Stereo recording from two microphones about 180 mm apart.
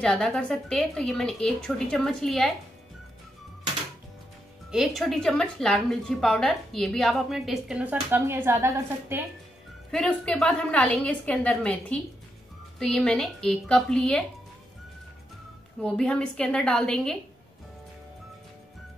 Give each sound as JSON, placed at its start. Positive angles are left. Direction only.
{"t": 0.0, "sound": "a woman's voice", "side_deg": 5}
{"t": 4.6, "sound": "a woman's voice", "side_deg": 0}
{"t": 9.8, "sound": "a woman's voice", "side_deg": 5}
{"t": 15.8, "sound": "a woman's voice", "side_deg": 5}